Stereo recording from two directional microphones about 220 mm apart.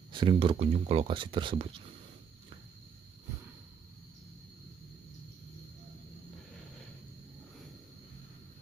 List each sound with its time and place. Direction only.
0.1 s speech: 20° right (ahead or behind)